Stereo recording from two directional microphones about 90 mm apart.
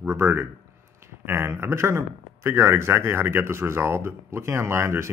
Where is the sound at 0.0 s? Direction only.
30° right (ahead or behind).